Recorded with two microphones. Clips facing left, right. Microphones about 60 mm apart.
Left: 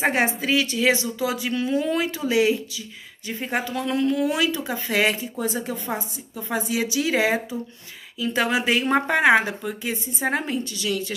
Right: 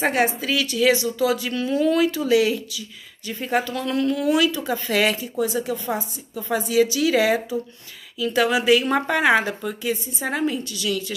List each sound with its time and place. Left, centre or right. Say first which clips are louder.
0.0 s a woman's voice: right 1 dB; left
4.3 s speech: right 4 dB; left
5.4 s speech: right 6 dB; left
10.1 s a woman's voice: left 3 dB; left